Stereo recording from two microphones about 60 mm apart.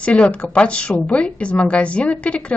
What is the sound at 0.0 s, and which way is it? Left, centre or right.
Speech, centre.